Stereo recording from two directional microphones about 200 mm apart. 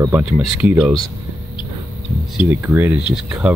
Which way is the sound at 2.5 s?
10° right (ahead or behind).